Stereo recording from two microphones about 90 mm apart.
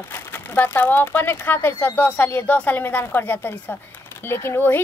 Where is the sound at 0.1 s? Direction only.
25° left (ahead or behind).